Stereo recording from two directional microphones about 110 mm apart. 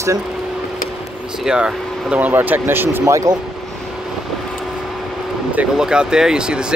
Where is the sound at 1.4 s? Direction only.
10° right (ahead or behind).